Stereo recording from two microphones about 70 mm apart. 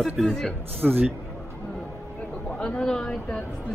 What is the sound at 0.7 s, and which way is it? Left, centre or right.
Speech, right.